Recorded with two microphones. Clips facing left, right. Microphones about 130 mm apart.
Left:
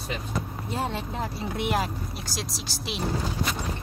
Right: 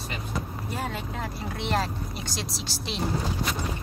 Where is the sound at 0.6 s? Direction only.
25° left (ahead or behind).